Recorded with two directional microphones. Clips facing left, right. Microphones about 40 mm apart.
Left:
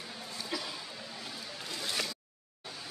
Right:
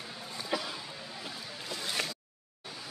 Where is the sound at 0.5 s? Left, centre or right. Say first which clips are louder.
Right 4 dB; centre.